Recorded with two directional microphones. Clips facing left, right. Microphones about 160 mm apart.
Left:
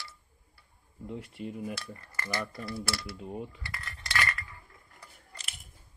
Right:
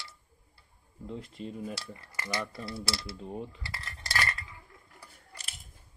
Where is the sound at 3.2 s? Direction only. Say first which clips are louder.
Even; 5° left (ahead or behind).